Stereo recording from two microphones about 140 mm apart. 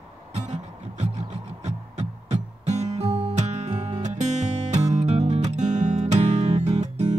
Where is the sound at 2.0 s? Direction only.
55° right (ahead or behind).